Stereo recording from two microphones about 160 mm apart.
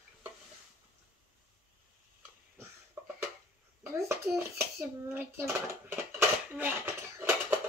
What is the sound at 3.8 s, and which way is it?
Hands, 15° right (ahead or behind).